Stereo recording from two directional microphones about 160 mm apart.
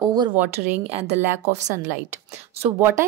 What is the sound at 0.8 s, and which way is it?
Speech, 40° right (ahead or behind).